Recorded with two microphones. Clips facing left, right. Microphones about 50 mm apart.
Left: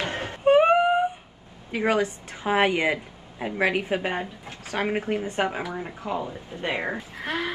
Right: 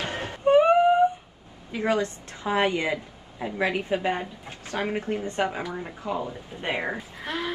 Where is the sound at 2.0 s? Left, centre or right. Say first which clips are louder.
Left 2 dB; centre.